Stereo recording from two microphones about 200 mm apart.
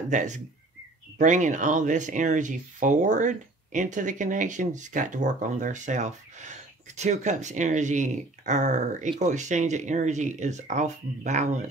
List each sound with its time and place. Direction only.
0.1 s speech: 40° right (ahead or behind)